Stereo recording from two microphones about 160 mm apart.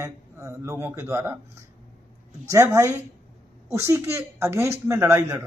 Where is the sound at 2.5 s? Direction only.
20° right (ahead or behind).